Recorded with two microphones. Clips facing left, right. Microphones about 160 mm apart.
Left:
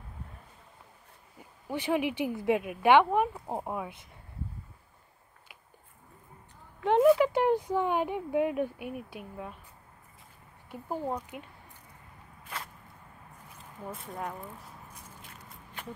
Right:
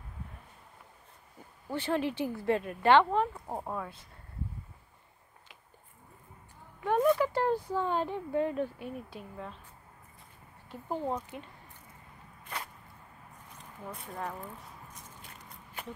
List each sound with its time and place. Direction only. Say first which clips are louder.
1.7 s speech: left 2 dB; 15° left (ahead or behind)
6.8 s speech: left 4 dB; 20° left (ahead or behind)
10.7 s speech: even; 10° left (ahead or behind)
13.8 s speech: left 2 dB; centre (ahead or behind)
15.2 s walk: left 1 dB; centre (ahead or behind)